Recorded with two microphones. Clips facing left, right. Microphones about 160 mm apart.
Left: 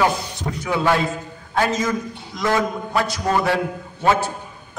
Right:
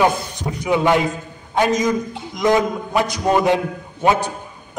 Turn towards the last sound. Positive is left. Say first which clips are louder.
# right 1 dB
turn(degrees=-15)  # may be behind; listen again after turning